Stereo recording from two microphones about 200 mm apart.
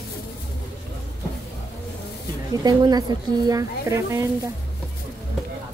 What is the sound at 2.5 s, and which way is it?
A woman's voice, 20° right (ahead or behind).